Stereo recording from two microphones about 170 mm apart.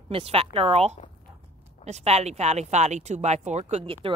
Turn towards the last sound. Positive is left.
turn(degrees=-35)  # may be behind; listen again after turning